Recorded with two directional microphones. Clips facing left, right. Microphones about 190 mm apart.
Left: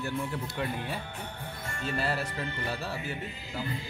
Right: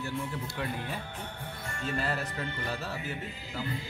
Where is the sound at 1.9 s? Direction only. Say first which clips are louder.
Left 2 dB; 30° left (ahead or behind).